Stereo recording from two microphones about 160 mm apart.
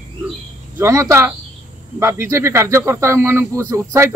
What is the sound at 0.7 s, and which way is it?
Speech, 20° right (ahead or behind).